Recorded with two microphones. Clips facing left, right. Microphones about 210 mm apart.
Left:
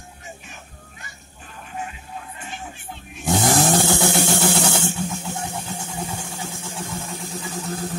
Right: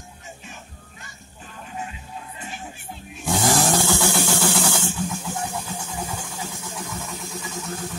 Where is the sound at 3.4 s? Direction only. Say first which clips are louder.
Left 1 dB; 20° left (ahead or behind).